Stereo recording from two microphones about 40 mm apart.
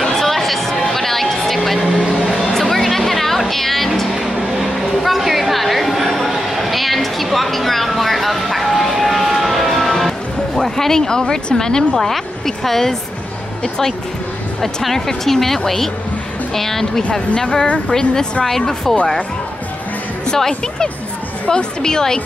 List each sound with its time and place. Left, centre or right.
0.0 s music: centre
4.1 s a sound: centre
12.0 s speech: centre
14.6 s speech: centre
20.2 s speech: centre